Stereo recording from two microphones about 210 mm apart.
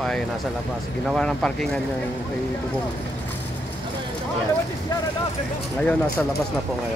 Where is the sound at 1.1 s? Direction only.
5° left (ahead or behind).